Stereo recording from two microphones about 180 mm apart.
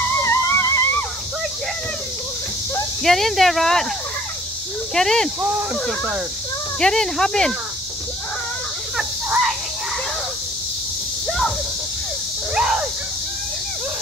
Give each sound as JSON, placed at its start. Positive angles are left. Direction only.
{"t": 0.2, "sound": "music", "side_deg": 15}
{"t": 3.0, "sound": "speech", "side_deg": 0}
{"t": 4.9, "sound": "speech", "side_deg": 5}
{"t": 6.8, "sound": "speech", "side_deg": 5}
{"t": 8.9, "sound": "cricket", "side_deg": 0}
{"t": 11.2, "sound": "a sound", "side_deg": 5}
{"t": 12.5, "sound": "a sound", "side_deg": -5}